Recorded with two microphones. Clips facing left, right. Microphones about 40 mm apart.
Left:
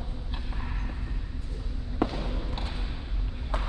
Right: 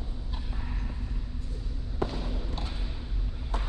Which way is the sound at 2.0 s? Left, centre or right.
Left.